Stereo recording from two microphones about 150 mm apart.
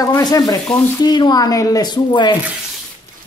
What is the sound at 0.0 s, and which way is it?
Speech, 25° left (ahead or behind).